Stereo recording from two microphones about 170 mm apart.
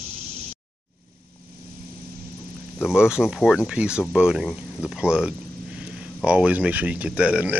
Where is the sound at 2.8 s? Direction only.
5° right (ahead or behind).